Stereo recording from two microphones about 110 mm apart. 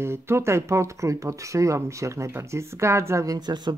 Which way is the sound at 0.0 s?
25° right (ahead or behind).